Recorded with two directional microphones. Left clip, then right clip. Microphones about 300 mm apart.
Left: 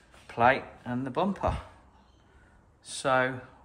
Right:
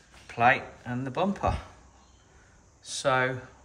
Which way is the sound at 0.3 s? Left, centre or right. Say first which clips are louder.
Right 1 dB; centre.